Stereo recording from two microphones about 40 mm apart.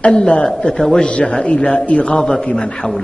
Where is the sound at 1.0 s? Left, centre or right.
Left.